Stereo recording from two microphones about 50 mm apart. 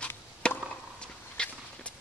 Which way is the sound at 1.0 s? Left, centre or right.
Centre.